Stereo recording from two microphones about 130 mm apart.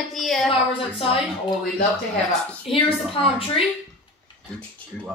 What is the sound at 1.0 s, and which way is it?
Speech, 45° left (ahead or behind).